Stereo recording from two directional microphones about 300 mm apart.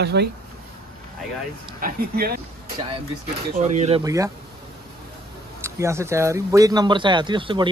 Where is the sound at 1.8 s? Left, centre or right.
Right.